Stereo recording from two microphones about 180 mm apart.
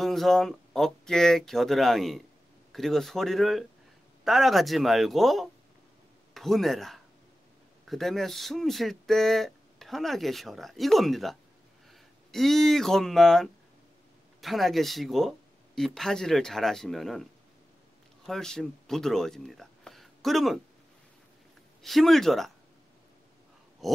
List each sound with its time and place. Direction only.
0.0 s speech: centre (ahead or behind)
21.8 s speech: centre (ahead or behind)
23.8 s a sound: centre (ahead or behind)